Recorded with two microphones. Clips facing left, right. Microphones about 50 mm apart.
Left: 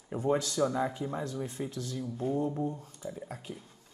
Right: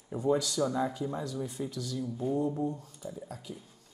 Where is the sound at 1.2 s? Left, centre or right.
Left.